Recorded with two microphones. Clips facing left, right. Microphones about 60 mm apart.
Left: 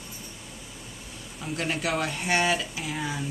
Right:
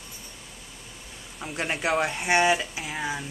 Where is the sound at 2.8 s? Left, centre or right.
Centre.